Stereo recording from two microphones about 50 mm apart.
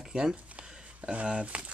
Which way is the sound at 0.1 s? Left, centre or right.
Centre.